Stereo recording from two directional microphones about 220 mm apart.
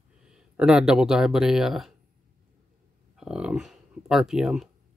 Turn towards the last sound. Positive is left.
turn(degrees=0)  # may be behind; listen again after turning